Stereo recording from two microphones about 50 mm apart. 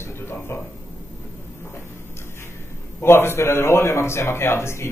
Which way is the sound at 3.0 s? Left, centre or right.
Left.